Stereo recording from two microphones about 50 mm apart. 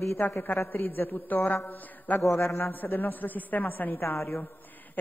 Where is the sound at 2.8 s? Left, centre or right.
Left.